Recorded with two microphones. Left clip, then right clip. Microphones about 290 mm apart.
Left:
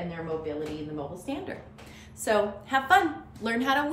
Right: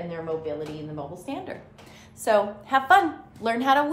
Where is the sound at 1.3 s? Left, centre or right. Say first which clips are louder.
Right 1 dB; centre.